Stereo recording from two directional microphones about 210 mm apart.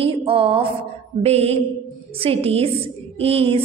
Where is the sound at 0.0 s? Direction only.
25° right (ahead or behind).